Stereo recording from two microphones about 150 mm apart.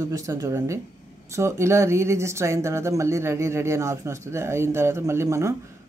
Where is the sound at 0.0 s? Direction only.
20° right (ahead or behind).